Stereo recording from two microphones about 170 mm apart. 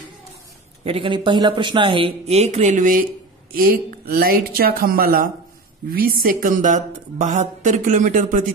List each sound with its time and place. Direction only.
0.8 s speech: 30° right (ahead or behind); by 8.5 s 50° right (ahead or behind)